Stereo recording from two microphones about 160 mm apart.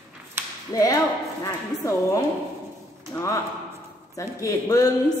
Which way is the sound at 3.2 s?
20° left (ahead or behind).